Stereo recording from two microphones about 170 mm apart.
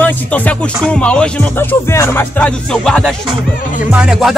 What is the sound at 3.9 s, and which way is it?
Speech, 5° right (ahead or behind).